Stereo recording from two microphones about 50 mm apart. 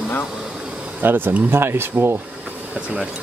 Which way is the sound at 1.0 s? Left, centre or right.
Right.